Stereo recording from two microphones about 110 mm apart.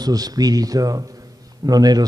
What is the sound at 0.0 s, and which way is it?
A man's voice, 35° right (ahead or behind).